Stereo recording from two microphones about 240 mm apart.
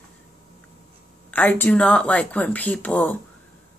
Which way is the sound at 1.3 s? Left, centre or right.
Centre.